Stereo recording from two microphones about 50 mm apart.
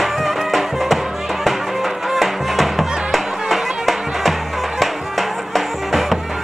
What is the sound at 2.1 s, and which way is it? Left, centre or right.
Music, centre.